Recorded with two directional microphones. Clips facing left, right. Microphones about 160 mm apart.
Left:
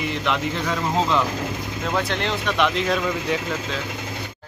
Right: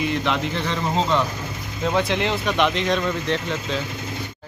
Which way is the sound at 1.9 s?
Centre (ahead or behind).